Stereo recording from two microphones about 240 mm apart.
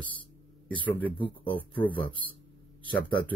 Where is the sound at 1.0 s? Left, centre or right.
Left.